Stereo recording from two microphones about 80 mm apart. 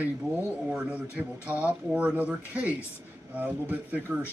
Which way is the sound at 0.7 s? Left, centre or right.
Centre.